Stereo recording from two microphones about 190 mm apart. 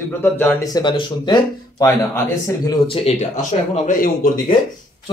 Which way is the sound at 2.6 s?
30° left (ahead or behind).